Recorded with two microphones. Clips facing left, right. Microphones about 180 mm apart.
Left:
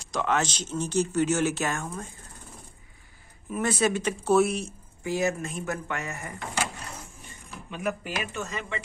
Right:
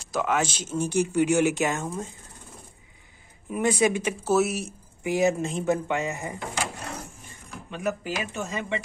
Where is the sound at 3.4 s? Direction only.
15° right (ahead or behind).